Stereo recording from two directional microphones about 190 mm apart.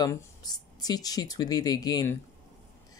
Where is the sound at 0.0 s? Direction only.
20° left (ahead or behind).